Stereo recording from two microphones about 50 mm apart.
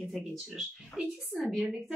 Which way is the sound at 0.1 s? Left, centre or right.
Centre.